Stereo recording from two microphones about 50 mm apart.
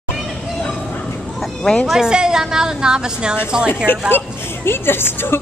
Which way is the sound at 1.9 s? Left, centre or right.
Centre.